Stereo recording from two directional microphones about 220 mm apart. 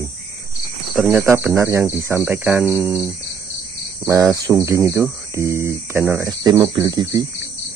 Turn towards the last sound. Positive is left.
turn(degrees=-15)  # may be behind; listen again after turning